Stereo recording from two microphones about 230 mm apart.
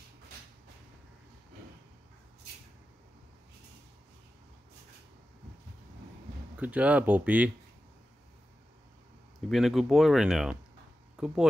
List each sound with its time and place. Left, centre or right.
6.5 s speech: centre
9.5 s speech: centre